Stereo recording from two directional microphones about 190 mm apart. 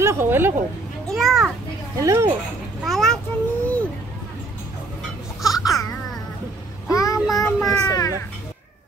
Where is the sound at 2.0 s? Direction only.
15° right (ahead or behind).